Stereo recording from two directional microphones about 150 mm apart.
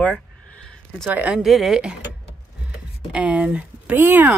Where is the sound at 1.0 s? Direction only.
10° right (ahead or behind).